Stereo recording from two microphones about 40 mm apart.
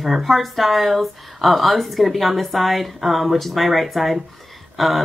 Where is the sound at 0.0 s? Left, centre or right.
Centre.